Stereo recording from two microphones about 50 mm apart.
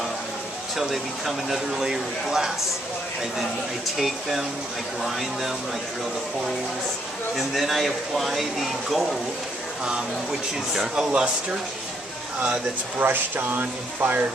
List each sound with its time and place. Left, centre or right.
0.7 s speech: centre
4.0 s speech: centre
7.3 s speech: centre
10.7 s speech: centre
11.1 s speech: right
13.0 s speech: right